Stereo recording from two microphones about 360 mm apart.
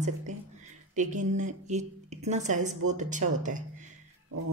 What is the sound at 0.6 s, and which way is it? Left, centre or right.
A woman's voice, centre.